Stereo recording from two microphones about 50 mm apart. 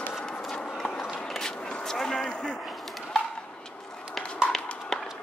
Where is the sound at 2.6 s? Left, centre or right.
Centre.